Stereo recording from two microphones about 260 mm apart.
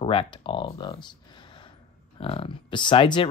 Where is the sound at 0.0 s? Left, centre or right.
Centre.